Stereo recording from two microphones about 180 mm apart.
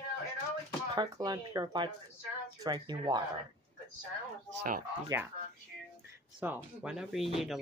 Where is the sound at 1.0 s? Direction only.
25° right (ahead or behind).